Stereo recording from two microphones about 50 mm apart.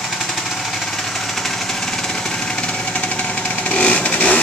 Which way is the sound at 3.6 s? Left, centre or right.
Left.